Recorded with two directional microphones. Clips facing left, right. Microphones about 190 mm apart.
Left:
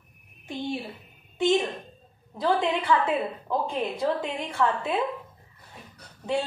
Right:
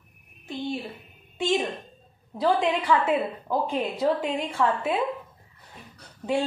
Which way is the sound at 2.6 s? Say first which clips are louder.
Right 1 dB; 10° right (ahead or behind).